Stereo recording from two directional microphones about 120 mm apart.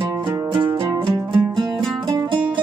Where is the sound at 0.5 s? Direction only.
40° right (ahead or behind).